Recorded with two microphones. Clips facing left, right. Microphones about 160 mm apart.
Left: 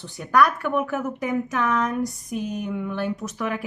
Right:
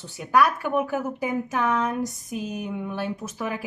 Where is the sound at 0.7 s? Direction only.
30° right (ahead or behind).